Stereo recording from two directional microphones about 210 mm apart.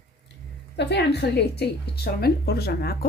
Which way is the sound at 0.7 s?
50° left (ahead or behind).